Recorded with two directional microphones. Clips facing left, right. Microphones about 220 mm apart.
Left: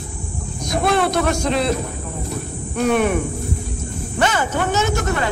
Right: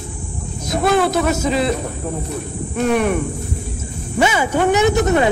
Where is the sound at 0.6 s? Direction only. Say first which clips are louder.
Right 2 dB; centre (ahead or behind).